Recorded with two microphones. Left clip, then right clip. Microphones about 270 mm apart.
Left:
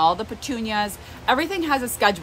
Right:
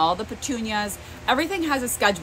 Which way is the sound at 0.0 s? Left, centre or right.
Centre.